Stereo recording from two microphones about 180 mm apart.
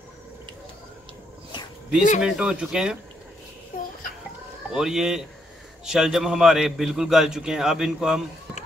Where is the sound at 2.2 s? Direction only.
5° right (ahead or behind).